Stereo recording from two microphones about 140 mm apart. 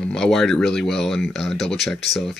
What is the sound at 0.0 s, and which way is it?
Speech, 5° left (ahead or behind).